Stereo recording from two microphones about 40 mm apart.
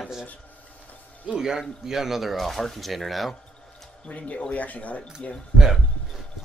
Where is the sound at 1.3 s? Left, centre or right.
Centre.